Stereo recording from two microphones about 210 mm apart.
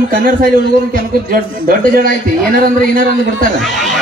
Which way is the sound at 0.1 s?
40° right (ahead or behind).